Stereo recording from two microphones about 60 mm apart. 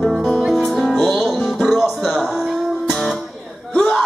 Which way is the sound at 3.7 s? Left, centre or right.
Centre.